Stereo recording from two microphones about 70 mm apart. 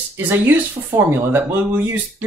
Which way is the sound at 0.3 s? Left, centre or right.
Right.